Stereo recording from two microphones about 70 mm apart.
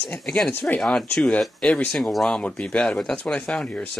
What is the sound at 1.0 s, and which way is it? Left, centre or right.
Speech, centre.